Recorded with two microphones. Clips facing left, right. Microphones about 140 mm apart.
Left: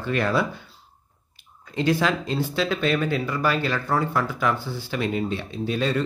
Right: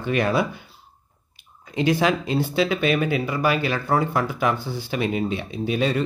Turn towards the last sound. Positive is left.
turn(degrees=-15)  # may be behind; listen again after turning